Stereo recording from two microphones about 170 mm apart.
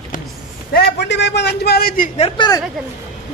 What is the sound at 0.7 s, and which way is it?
A man's voice, 90° left.